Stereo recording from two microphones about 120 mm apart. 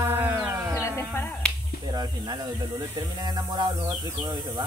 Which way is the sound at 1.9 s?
35° right (ahead or behind).